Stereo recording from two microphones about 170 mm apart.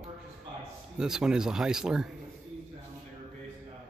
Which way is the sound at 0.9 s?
5° right (ahead or behind).